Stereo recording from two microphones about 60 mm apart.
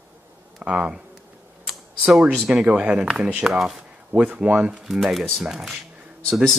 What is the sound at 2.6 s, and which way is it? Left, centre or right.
Speech, right.